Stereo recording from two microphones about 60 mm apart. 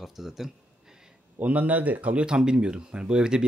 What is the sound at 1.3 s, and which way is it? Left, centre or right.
A man's voice, right.